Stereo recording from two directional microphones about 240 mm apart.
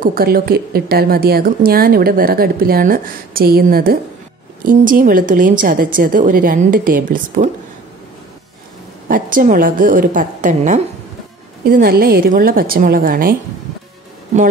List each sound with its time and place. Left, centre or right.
0.0 s a woman's voice: right
9.1 s a woman's voice: right